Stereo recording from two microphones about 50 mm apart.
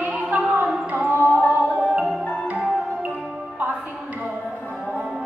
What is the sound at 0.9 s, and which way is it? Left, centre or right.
Carnatic music, right.